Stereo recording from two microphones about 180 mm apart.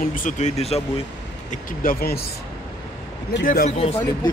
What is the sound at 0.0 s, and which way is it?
Speech, 50° left (ahead or behind).